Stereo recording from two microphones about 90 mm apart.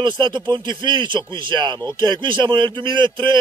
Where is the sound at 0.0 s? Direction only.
55° right (ahead or behind).